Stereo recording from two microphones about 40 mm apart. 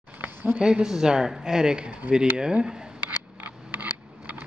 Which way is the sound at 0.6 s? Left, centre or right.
Right.